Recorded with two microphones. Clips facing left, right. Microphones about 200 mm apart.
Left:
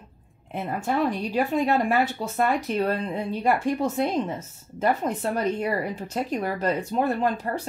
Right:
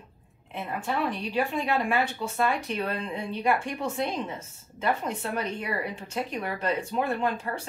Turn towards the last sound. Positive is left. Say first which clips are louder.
# left 4 dB
turn(degrees=40)  # may be behind; listen again after turning